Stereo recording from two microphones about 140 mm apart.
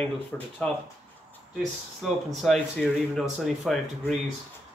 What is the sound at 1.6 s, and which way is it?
Speech, centre (ahead or behind).